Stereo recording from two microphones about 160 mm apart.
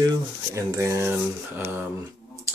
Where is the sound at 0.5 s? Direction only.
20° right (ahead or behind).